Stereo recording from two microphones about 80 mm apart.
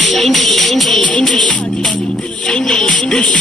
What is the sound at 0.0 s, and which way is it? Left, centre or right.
Music, centre.